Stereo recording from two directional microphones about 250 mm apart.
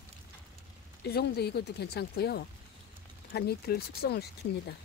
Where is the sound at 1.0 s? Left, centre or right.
Left.